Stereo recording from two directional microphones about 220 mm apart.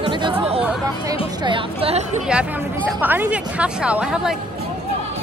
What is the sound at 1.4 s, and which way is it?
Speech, 25° right (ahead or behind).